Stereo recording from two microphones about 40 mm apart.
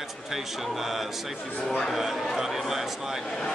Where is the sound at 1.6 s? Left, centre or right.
Centre.